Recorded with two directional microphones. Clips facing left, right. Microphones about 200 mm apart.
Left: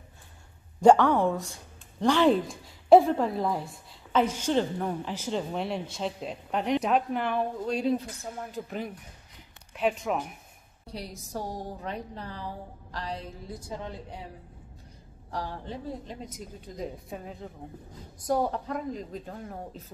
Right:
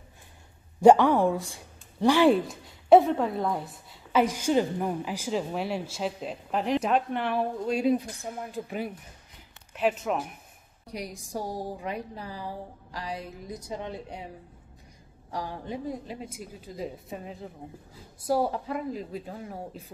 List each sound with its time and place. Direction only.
0.8 s a woman's voice: 10° right (ahead or behind)
2.9 s a woman's voice: centre (ahead or behind)
10.9 s a woman's voice: 15° right (ahead or behind)
15.3 s a woman's voice: 15° right (ahead or behind)